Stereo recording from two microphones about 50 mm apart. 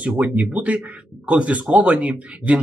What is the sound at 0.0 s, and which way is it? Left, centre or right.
Speech, right.